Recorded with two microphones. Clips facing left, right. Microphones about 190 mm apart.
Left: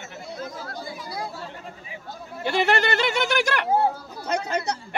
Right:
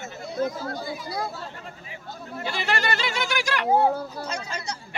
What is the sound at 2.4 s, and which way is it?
Speech, 60° left (ahead or behind).